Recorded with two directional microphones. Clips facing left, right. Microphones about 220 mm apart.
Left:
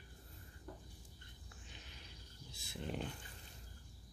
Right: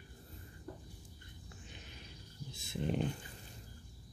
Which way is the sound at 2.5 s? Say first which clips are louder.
Right 8 dB; 20° right (ahead or behind).